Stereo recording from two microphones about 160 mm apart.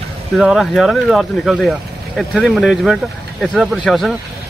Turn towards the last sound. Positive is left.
turn(degrees=0)  # may be behind; listen again after turning